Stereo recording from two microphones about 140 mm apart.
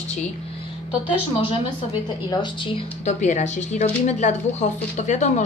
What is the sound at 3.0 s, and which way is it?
A woman's voice, 60° left (ahead or behind).